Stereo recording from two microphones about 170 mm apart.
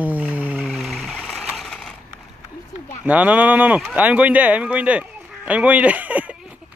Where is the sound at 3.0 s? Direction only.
10° right (ahead or behind).